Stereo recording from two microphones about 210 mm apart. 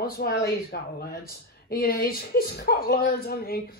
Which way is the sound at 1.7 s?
45° left (ahead or behind).